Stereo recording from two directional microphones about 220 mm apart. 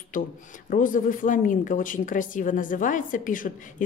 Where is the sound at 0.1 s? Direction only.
35° left (ahead or behind).